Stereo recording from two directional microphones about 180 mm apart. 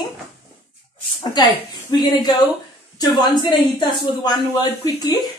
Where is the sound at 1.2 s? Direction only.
20° left (ahead or behind).